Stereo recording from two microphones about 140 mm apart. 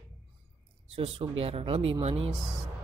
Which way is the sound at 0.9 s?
45° right (ahead or behind).